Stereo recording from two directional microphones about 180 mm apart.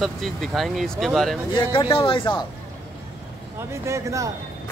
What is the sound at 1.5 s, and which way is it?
Speech, 25° left (ahead or behind).